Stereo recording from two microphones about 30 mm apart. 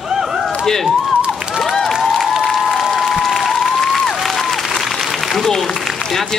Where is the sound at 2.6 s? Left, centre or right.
Centre.